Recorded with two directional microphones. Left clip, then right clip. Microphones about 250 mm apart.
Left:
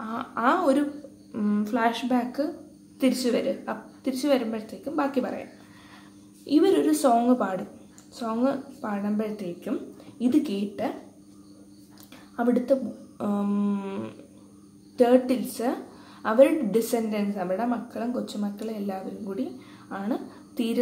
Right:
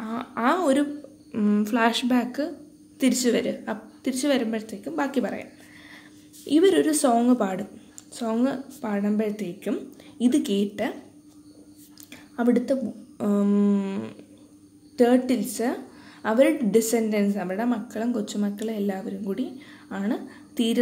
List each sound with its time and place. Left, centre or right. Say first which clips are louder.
0.0 s a sound: even; right
1.3 s a woman's voice: right 3 dB; right
6.4 s a woman's voice: right 2 dB; right
12.4 s a woman's voice: even; right